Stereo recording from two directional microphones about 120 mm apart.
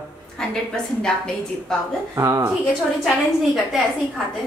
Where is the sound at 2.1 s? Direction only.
25° right (ahead or behind).